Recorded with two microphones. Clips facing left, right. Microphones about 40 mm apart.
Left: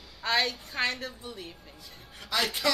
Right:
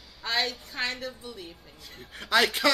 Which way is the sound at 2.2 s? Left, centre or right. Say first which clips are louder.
Right 6 dB; right.